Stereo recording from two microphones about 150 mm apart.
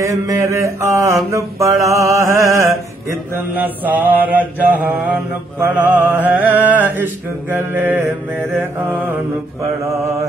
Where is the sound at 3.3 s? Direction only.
10° right (ahead or behind).